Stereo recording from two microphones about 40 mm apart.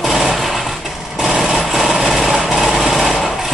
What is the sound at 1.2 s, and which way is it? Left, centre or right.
Light engine, centre.